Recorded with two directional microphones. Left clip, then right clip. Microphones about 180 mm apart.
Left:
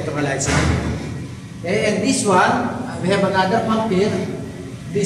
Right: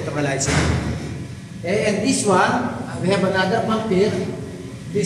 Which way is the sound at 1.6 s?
5° right (ahead or behind).